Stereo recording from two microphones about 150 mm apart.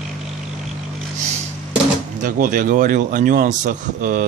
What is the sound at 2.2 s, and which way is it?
Speech, 60° right (ahead or behind).